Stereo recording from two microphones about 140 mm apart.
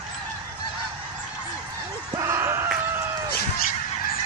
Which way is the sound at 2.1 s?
20° right (ahead or behind).